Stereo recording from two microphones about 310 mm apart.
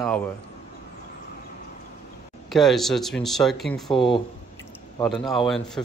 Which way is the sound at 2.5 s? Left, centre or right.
Centre.